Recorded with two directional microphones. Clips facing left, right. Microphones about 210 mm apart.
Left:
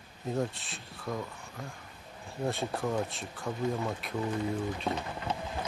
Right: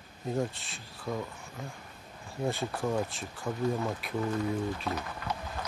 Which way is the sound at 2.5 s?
Centre (ahead or behind).